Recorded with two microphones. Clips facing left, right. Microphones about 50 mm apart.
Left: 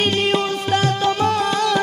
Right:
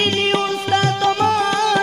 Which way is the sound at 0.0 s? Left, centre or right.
Right.